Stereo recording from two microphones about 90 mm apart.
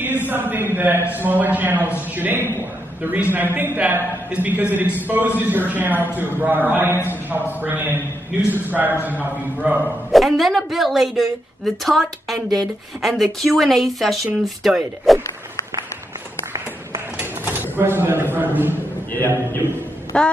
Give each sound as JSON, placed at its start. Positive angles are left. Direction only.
{"t": 0.3, "sound": "a man's voice", "side_deg": -25}
{"t": 10.1, "sound": "a woman's voice", "side_deg": 0}
{"t": 17.2, "sound": "a sound", "side_deg": -20}
{"t": 19.1, "sound": "a man's voice", "side_deg": 25}
{"t": 20.1, "sound": "child singing", "side_deg": 10}